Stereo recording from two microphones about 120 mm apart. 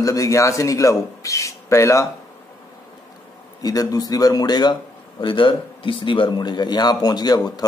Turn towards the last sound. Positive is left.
turn(degrees=35)  # may be behind; listen again after turning